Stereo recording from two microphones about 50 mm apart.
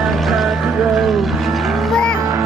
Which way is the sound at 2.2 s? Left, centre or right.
Right.